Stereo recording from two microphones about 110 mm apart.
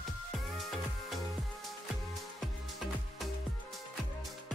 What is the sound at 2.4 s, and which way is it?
Music, centre (ahead or behind).